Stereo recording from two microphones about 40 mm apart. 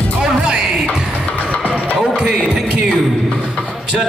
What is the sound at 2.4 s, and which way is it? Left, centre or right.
Music, centre.